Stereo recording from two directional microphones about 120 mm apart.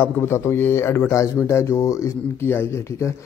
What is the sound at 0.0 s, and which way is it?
Speech, 20° left (ahead or behind).